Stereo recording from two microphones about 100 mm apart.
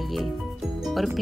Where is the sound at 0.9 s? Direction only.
Centre (ahead or behind).